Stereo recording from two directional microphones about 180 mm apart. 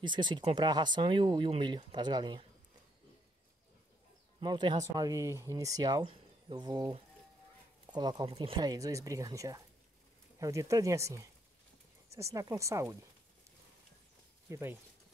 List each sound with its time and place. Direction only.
0.0 s speech: 25° right (ahead or behind)
4.4 s speech: 25° right (ahead or behind)
14.5 s speech: 15° right (ahead or behind)